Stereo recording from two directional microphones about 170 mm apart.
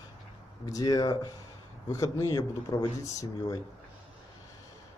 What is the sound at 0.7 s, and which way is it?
A man's voice, 20° left (ahead or behind).